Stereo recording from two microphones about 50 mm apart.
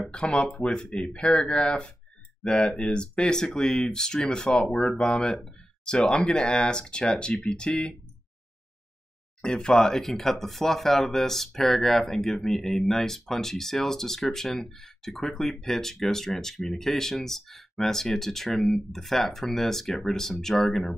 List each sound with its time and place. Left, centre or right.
0.1 s speech: centre
9.4 s speech: centre